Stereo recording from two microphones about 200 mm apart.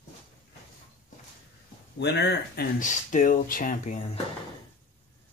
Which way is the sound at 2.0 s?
55° left (ahead or behind).